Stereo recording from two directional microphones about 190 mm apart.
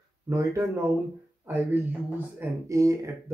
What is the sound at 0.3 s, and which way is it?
Speech, 15° right (ahead or behind).